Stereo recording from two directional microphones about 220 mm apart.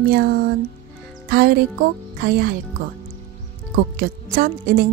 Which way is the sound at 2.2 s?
45° right (ahead or behind).